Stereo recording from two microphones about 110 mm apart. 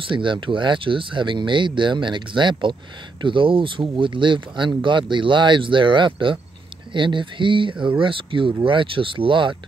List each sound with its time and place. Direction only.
0.1 s speech: 50° right (ahead or behind)